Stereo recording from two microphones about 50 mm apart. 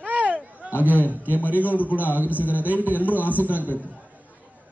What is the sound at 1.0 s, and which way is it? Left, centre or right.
A man's voice, right.